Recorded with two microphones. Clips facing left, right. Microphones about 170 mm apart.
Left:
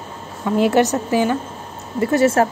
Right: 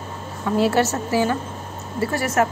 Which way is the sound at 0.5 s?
20° left (ahead or behind).